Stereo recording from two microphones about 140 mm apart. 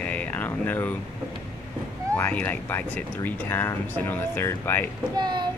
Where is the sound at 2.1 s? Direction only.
15° left (ahead or behind).